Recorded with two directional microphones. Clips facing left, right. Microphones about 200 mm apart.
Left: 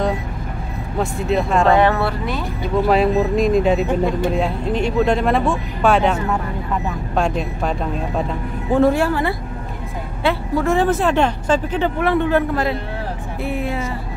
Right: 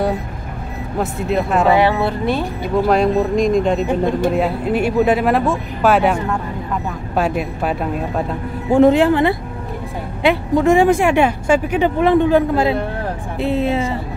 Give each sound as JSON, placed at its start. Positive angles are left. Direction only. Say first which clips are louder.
{"t": 0.9, "sound": "speech", "louder": "even", "side_deg": 0}
{"t": 2.9, "sound": "speech", "louder": "even", "side_deg": 5}